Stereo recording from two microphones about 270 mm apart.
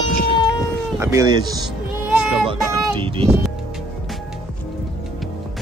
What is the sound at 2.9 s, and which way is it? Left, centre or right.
Speech, centre.